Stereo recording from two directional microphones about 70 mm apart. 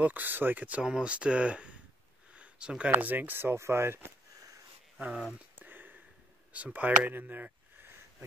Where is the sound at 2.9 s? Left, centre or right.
Right.